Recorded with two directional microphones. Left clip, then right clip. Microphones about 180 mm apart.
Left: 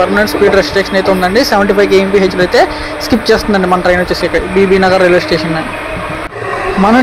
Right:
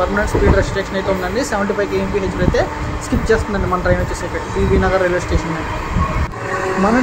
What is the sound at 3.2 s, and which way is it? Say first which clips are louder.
Speech: left 6 dB; 35° left (ahead or behind).